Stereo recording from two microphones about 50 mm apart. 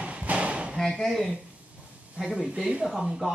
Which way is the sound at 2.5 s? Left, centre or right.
Centre.